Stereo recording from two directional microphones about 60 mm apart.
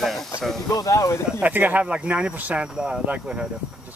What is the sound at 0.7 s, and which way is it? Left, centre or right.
Speech, left.